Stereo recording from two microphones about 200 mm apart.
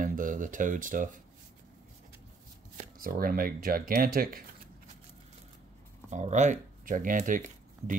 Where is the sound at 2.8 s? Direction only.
45° right (ahead or behind).